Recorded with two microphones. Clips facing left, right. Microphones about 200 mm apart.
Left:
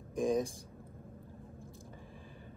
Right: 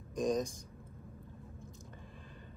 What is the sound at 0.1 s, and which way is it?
Speech, 15° right (ahead or behind).